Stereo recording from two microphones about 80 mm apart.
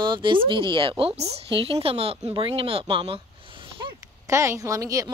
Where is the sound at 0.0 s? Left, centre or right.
Right.